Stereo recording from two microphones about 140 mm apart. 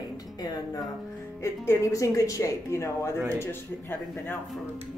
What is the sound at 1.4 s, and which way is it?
Speech, 20° left (ahead or behind).